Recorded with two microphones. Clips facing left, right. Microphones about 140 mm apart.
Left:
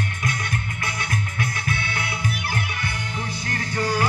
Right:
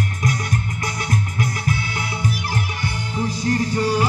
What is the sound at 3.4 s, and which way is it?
Music, 30° right (ahead or behind).